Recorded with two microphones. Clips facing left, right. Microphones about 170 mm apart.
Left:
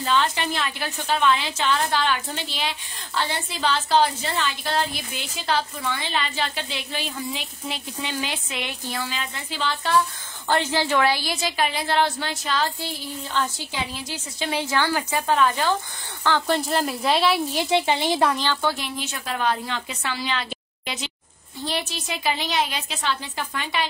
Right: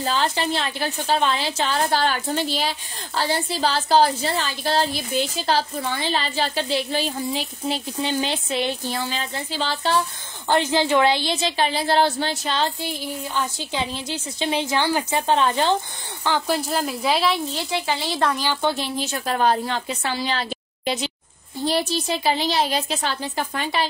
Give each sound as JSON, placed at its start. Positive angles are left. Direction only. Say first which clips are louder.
{"t": 0.0, "sound": "a woman's voice", "louder": "even", "side_deg": -35}
{"t": 10.5, "sound": "a woman's voice", "louder": "right 3 dB", "side_deg": -20}
{"t": 12.8, "sound": "a sound", "louder": "right 3 dB", "side_deg": -15}
{"t": 13.7, "sound": "a woman's voice", "louder": "right 5 dB", "side_deg": -25}
{"t": 16.3, "sound": "speech", "louder": "even", "side_deg": -10}
{"t": 17.5, "sound": "a woman's voice", "louder": "left 4 dB", "side_deg": 15}
{"t": 18.4, "sound": "a woman's voice", "louder": "right 2 dB", "side_deg": -15}